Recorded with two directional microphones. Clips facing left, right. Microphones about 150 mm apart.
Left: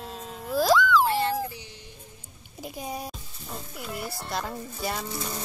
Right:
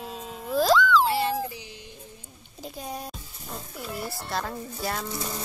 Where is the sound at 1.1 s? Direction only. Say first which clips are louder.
Even; 10° right (ahead or behind).